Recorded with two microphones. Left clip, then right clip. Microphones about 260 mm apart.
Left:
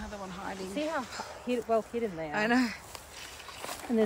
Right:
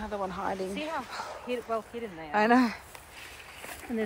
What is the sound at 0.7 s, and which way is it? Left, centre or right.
Speech, left.